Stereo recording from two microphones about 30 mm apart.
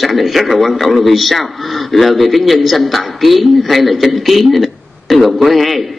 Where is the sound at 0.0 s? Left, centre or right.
Centre.